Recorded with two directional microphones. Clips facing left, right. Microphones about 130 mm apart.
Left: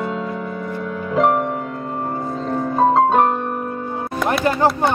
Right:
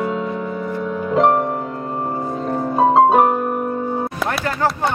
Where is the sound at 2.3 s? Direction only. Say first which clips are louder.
Right 1 dB; 15° right (ahead or behind).